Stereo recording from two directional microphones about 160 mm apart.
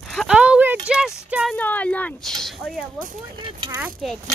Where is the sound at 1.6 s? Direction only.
10° left (ahead or behind).